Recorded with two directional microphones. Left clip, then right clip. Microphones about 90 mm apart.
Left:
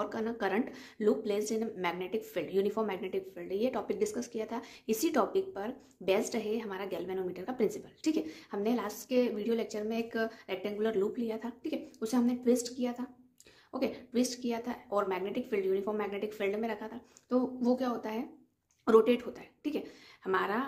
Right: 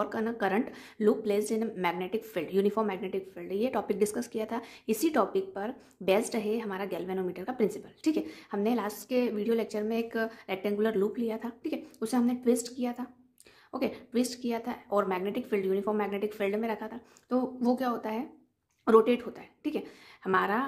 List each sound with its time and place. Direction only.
0.0 s a woman's voice: 30° right (ahead or behind)
4.0 s a woman's voice: 45° right (ahead or behind); by 10.5 s 20° right (ahead or behind)
10.5 s a woman's voice: 35° right (ahead or behind)
17.6 s a woman's voice: 40° right (ahead or behind)